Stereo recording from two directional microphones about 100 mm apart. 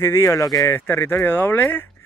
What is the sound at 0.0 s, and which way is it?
Speech, 30° left (ahead or behind).